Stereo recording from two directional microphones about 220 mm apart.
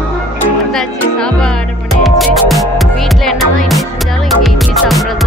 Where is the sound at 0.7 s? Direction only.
5° left (ahead or behind).